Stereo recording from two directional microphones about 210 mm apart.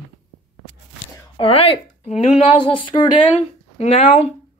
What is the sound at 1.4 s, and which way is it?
Speech, 25° left (ahead or behind).